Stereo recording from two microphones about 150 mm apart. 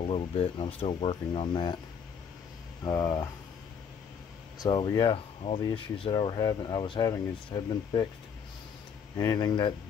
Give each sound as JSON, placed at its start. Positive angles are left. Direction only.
{"t": 0.1, "sound": "speech", "side_deg": 40}
{"t": 2.8, "sound": "speech", "side_deg": 20}
{"t": 4.6, "sound": "speech", "side_deg": 25}
{"t": 9.1, "sound": "speech", "side_deg": 25}